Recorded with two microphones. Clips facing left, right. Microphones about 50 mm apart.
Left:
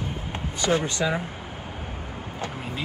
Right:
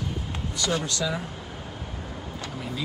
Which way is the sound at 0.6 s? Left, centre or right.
Left.